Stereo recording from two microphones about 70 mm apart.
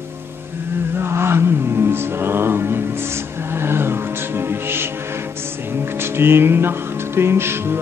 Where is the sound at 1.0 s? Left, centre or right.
Right.